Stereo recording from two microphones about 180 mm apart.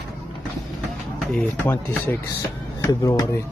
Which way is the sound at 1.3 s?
5° left (ahead or behind).